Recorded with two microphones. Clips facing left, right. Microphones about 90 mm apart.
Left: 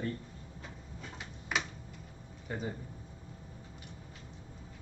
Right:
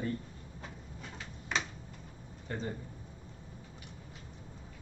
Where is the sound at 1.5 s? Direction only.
5° left (ahead or behind).